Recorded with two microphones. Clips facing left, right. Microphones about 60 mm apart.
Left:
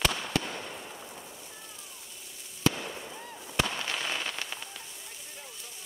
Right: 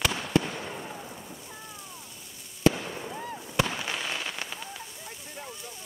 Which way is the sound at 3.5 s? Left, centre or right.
Centre.